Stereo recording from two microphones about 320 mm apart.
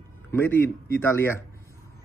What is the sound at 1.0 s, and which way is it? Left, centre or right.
Speech, centre.